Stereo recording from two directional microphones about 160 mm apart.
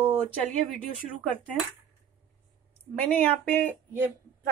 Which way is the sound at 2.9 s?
10° left (ahead or behind).